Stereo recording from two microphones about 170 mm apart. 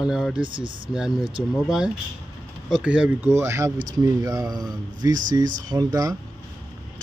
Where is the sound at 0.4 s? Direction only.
30° right (ahead or behind).